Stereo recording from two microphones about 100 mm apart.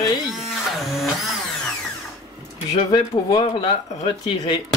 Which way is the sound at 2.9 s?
55° left (ahead or behind).